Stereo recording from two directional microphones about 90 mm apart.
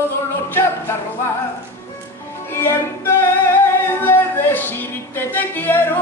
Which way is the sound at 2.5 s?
25° left (ahead or behind).